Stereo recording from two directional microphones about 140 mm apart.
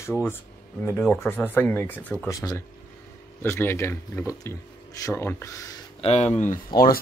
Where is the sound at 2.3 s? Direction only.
25° left (ahead or behind).